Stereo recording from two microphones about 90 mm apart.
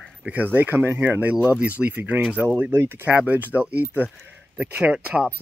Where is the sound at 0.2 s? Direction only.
20° right (ahead or behind).